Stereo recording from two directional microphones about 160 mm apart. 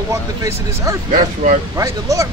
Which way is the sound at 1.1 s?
55° right (ahead or behind).